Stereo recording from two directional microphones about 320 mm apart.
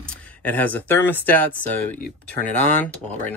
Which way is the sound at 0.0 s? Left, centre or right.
Centre.